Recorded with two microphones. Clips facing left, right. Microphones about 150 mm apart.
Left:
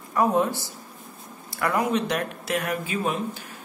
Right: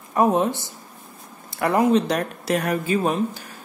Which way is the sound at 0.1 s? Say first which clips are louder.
Right 3 dB; 20° right (ahead or behind).